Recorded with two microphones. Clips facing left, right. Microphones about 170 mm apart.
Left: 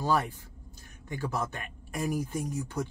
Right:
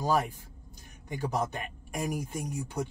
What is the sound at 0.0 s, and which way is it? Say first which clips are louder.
Speech: even; 15° right (ahead or behind).